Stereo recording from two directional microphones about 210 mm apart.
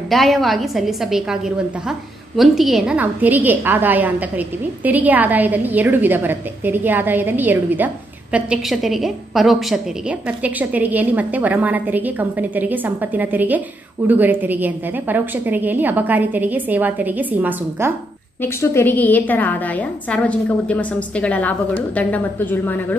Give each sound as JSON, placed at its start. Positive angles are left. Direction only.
{"t": 0.1, "sound": "a woman's voice", "side_deg": 0}
{"t": 18.4, "sound": "a woman's voice", "side_deg": 10}